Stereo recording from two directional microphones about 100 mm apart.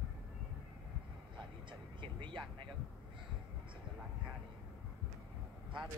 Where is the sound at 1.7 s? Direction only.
55° right (ahead or behind).